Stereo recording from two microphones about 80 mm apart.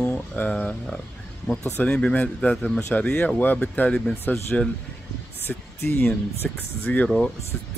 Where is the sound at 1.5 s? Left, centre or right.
Centre.